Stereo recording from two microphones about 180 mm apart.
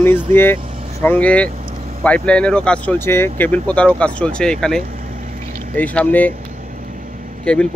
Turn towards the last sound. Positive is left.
turn(degrees=5)  # may be behind; listen again after turning